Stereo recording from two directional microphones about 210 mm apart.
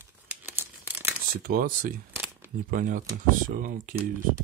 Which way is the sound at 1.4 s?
45° right (ahead or behind).